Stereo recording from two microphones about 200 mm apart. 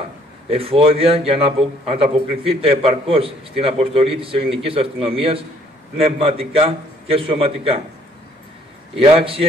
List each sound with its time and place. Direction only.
0.5 s a man's voice: 30° right (ahead or behind)
9.0 s a man's voice: 30° right (ahead or behind)